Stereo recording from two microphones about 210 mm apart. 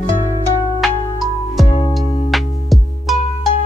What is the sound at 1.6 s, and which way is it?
Music, 25° left (ahead or behind).